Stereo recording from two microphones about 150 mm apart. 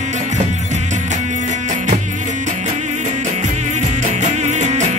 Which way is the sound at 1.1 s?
55° right (ahead or behind).